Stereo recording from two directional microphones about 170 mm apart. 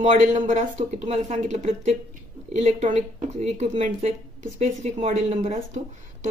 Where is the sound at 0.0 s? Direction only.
45° right (ahead or behind).